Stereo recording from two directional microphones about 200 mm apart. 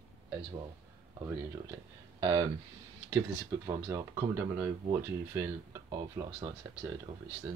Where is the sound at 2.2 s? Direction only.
15° right (ahead or behind).